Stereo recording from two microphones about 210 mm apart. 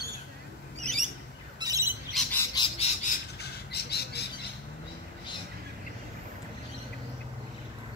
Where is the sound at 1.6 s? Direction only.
15° right (ahead or behind).